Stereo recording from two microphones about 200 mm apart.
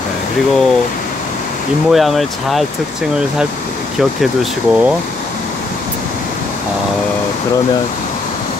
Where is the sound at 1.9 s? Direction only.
Centre (ahead or behind).